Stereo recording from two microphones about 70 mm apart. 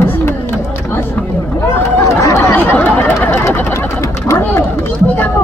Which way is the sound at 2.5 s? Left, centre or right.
Left.